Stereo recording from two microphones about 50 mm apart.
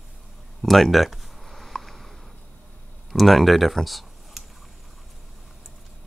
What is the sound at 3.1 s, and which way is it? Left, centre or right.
Speech, centre.